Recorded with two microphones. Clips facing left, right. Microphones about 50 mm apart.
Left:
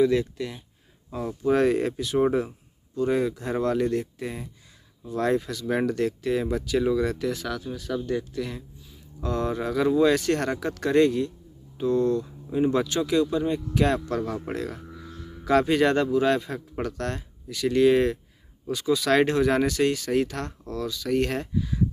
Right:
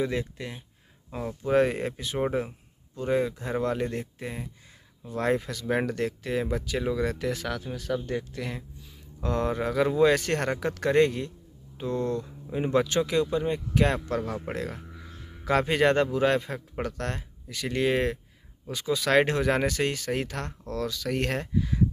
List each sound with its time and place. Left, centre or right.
0.0 s a man's voice: right
2.1 s speech: centre
3.6 s a man's voice: right
5.1 s a man's voice: right
7.2 s a man's voice: right
14.8 s music: centre
15.4 s a man's voice: right
20.6 s speech: right